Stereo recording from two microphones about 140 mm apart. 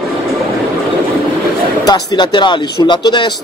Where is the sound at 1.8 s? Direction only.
30° left (ahead or behind).